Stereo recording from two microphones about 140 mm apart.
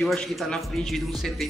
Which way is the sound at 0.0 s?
Centre (ahead or behind).